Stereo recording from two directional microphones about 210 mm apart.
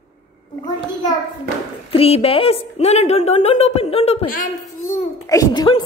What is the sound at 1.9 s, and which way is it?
A child's voice, 30° left (ahead or behind).